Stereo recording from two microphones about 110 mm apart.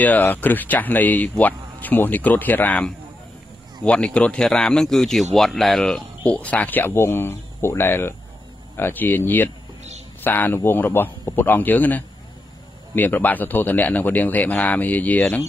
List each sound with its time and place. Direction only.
0.0 s speech: 15° left (ahead or behind)